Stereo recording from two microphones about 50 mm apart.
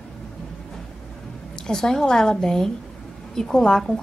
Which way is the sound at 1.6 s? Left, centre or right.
Centre.